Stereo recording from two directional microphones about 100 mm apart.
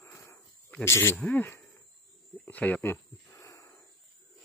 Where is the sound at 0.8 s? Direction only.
25° left (ahead or behind).